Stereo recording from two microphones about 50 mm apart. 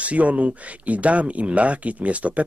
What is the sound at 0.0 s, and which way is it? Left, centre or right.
Speech, right.